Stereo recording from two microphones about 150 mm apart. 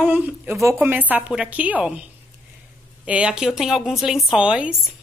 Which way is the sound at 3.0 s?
10° right (ahead or behind).